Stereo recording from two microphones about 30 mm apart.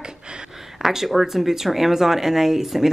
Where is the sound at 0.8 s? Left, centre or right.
Centre.